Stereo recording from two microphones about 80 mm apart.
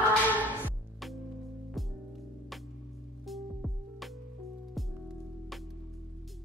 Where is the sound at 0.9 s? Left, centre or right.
Centre.